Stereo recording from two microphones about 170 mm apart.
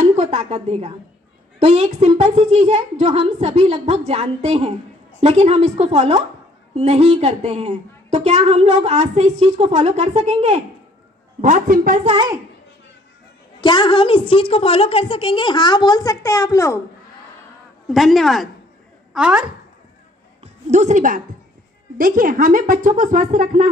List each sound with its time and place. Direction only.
0.1 s a woman's voice: 40° right (ahead or behind)
13.6 s a woman's voice: 25° left (ahead or behind)
17.8 s a woman's voice: centre (ahead or behind)
20.6 s a woman's voice: 45° right (ahead or behind)